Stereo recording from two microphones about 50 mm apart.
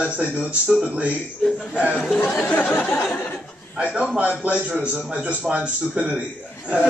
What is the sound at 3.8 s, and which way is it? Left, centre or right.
A man's voice, right.